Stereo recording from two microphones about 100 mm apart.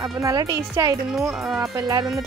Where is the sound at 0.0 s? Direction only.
35° right (ahead or behind).